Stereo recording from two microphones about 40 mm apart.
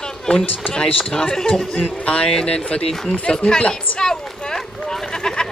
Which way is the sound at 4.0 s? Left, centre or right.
Centre.